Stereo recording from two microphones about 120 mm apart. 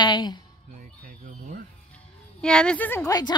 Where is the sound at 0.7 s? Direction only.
90° right.